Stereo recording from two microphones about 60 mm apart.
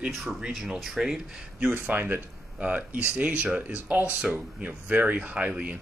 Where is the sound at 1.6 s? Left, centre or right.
Right.